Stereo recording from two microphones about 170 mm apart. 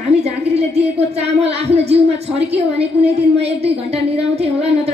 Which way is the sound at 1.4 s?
40° right (ahead or behind).